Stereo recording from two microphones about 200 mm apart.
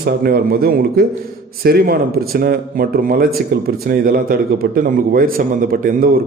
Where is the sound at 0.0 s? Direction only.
50° right (ahead or behind).